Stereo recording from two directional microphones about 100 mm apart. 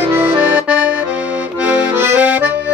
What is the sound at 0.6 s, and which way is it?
Accordion, 15° right (ahead or behind).